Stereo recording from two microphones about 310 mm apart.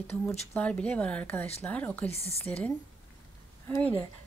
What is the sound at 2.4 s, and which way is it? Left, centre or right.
A woman's voice, centre.